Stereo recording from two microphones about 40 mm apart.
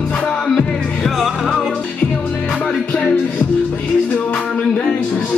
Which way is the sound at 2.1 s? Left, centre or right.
Left.